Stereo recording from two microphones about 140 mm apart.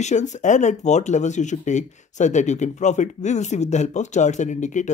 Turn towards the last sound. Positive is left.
turn(degrees=60)  # may be behind; listen again after turning